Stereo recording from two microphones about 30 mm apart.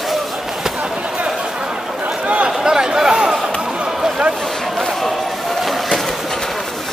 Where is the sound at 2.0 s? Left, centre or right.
Right.